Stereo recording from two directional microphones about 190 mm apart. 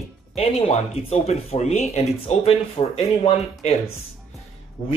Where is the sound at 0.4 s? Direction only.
30° left (ahead or behind).